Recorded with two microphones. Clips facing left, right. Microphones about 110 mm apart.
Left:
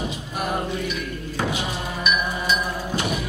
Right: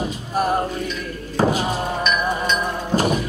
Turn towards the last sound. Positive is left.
turn(degrees=-40)  # may be behind; listen again after turning